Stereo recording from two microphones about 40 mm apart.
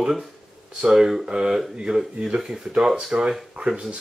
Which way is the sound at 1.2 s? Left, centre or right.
Right.